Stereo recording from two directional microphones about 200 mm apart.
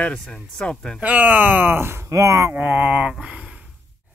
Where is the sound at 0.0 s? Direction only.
5° left (ahead or behind).